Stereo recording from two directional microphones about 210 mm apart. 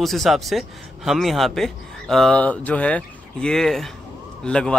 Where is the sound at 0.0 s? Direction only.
Centre (ahead or behind).